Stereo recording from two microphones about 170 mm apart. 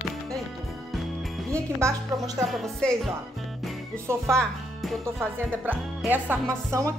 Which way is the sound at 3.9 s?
15° right (ahead or behind).